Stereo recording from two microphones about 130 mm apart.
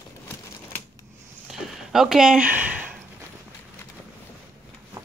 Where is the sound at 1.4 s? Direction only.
Centre (ahead or behind).